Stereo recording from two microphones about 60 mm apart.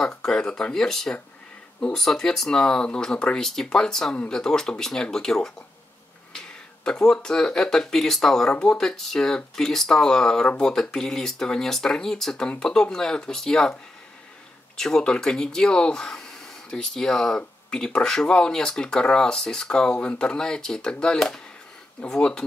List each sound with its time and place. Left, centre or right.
0.0 s speech: centre
14.8 s speech: centre